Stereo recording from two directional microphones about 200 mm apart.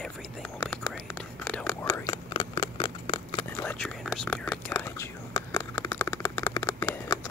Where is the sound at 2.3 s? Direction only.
30° left (ahead or behind).